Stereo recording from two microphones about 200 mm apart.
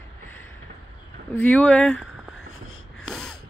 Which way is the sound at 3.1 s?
Centre (ahead or behind).